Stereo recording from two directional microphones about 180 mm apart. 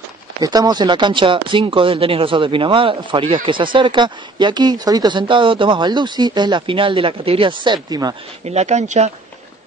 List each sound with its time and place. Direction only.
0.4 s speech: 20° right (ahead or behind)
8.5 s speech: 40° right (ahead or behind)